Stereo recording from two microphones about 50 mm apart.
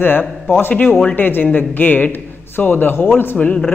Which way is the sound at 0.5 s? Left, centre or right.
Left.